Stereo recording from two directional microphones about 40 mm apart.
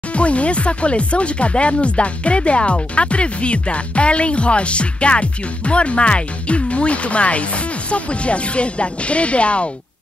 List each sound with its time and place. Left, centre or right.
0.1 s speech: left